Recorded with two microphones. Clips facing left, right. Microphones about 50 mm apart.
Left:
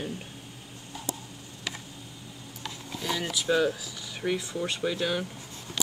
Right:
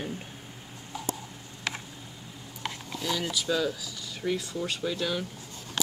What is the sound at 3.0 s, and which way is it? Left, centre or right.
Speech, left.